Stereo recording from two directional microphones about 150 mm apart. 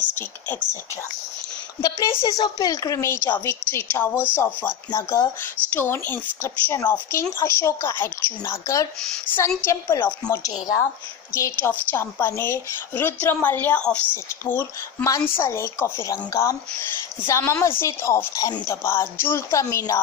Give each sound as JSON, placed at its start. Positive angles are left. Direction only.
{"t": 1.8, "sound": "a woman's voice", "side_deg": 25}